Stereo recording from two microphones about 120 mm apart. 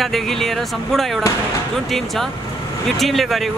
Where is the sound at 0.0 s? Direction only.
5° left (ahead or behind).